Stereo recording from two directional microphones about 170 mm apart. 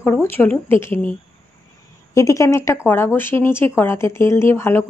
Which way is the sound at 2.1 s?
15° left (ahead or behind).